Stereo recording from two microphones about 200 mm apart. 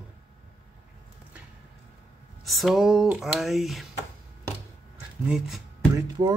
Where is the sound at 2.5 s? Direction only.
Centre (ahead or behind).